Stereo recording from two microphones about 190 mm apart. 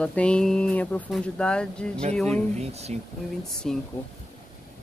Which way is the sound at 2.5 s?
35° right (ahead or behind).